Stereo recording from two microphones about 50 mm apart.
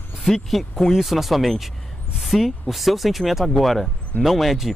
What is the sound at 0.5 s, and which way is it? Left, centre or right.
Speech, centre.